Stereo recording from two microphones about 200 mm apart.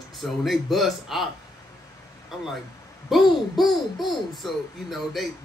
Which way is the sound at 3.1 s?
Centre (ahead or behind).